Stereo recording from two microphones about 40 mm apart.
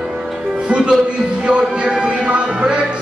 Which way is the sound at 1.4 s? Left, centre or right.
Right.